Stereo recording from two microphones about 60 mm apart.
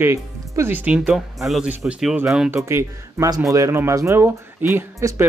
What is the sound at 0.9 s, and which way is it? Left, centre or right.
Speech, centre.